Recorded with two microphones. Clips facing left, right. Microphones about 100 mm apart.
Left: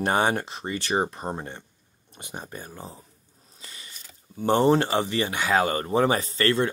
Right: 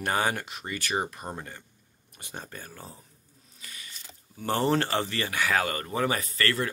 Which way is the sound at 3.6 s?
25° left (ahead or behind).